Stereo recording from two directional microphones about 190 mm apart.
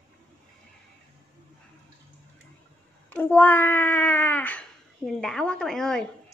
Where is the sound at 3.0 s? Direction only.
10° left (ahead or behind).